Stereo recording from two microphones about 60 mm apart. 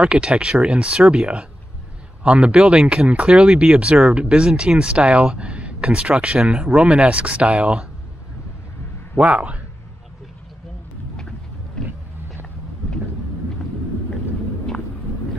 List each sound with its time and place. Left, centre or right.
0.0 s speech: centre
9.1 s speech: right